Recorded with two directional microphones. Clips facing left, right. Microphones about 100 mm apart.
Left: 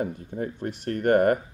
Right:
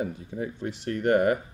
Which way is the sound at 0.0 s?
50° left (ahead or behind).